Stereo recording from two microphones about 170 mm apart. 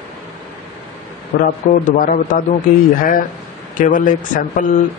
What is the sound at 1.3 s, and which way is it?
Speech, 65° left (ahead or behind).